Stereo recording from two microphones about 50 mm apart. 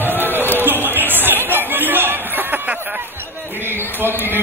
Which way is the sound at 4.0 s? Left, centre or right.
Right.